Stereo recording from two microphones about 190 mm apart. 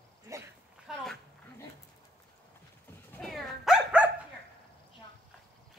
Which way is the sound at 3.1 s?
Centre (ahead or behind).